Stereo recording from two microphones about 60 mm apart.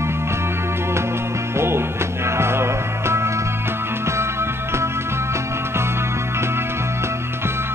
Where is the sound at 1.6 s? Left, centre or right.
Right.